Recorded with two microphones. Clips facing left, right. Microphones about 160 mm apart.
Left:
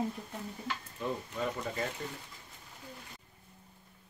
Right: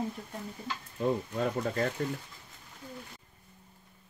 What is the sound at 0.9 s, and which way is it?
Speech, 55° right (ahead or behind).